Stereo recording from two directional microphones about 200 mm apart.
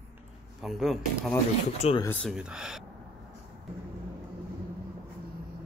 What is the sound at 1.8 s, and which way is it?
Speech, 30° left (ahead or behind).